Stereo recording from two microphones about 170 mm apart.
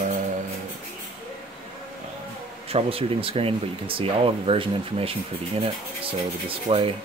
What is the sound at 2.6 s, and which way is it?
Speech, 35° right (ahead or behind).